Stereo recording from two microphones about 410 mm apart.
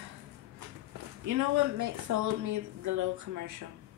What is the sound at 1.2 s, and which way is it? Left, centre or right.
Speech, right.